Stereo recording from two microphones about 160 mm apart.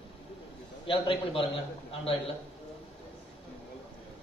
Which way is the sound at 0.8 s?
35° left (ahead or behind).